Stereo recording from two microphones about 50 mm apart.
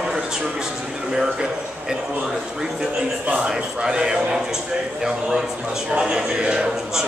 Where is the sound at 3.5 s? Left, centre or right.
Centre.